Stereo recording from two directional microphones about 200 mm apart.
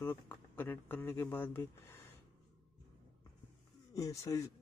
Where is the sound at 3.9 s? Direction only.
15° left (ahead or behind).